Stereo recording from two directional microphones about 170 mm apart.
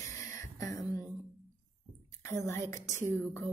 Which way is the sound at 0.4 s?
20° left (ahead or behind).